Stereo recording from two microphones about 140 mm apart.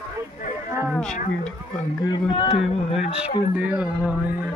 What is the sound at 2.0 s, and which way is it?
Speech, 40° left (ahead or behind).